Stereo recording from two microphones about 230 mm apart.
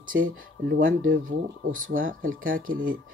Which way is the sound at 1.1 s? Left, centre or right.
Right.